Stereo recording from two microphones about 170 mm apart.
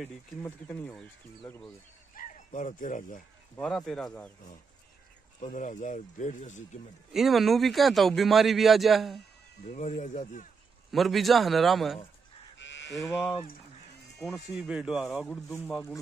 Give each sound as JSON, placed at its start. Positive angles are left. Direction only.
{"t": 0.4, "sound": "speech", "side_deg": 10}
{"t": 2.1, "sound": "speech", "side_deg": 50}
{"t": 3.6, "sound": "speech", "side_deg": 5}
{"t": 5.4, "sound": "speech", "side_deg": 45}
{"t": 7.1, "sound": "speech", "side_deg": 0}
{"t": 9.7, "sound": "speech", "side_deg": 45}
{"t": 10.9, "sound": "speech", "side_deg": 0}
{"t": 12.5, "sound": "livestock", "side_deg": 90}
{"t": 12.9, "sound": "speech", "side_deg": 0}